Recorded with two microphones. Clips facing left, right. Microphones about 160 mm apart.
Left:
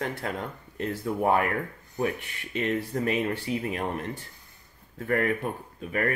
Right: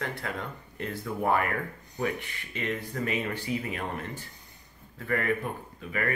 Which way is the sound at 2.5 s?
40° left (ahead or behind).